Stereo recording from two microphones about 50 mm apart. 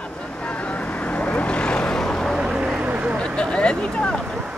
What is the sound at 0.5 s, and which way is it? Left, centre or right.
Vehicle, left.